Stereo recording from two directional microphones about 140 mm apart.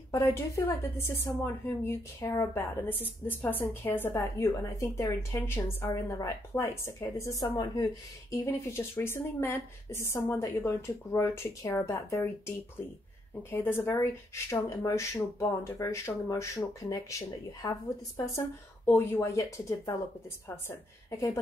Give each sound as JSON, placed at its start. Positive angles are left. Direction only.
{"t": 0.1, "sound": "a woman's voice", "side_deg": 20}